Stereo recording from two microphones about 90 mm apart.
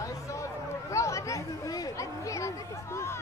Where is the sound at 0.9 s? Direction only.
35° left (ahead or behind).